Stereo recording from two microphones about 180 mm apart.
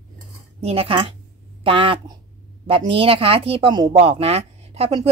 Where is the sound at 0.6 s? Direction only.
35° right (ahead or behind).